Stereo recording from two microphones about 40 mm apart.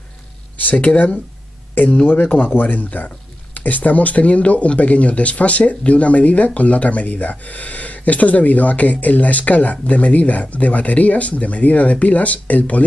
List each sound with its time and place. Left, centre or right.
0.6 s speech: left
2.0 s speech: left